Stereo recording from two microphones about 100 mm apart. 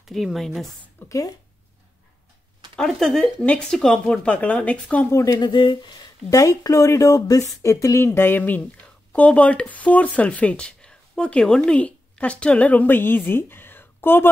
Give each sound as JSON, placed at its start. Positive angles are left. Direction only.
{"t": 0.0, "sound": "speech", "side_deg": 0}
{"t": 0.9, "sound": "speech", "side_deg": 30}
{"t": 2.7, "sound": "speech", "side_deg": 5}
{"t": 5.1, "sound": "speech", "side_deg": 35}
{"t": 5.5, "sound": "speech", "side_deg": 50}